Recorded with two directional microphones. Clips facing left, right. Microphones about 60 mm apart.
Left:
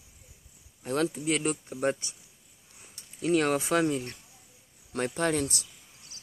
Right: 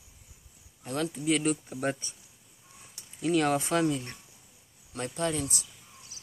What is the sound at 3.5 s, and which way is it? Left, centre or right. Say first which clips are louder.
Speech: left 1 dB; centre.